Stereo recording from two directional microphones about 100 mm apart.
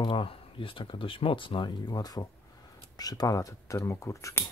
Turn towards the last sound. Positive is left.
turn(degrees=30)  # may be behind; listen again after turning